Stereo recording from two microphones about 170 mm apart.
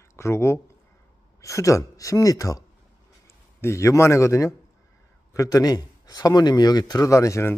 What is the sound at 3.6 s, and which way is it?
A man's voice, 15° left (ahead or behind).